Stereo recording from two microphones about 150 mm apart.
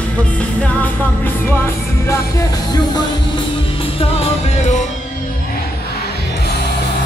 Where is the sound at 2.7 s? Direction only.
30° left (ahead or behind); by 4.8 s 50° left (ahead or behind).